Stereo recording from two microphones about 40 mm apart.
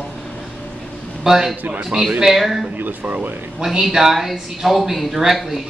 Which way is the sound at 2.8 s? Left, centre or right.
Right.